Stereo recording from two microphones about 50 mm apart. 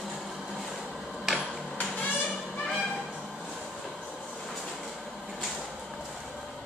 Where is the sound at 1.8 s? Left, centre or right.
Left.